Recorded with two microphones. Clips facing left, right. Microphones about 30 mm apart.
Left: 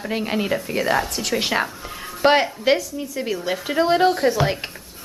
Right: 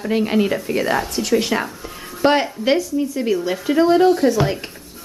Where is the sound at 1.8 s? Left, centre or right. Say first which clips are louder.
Right 1 dB; centre.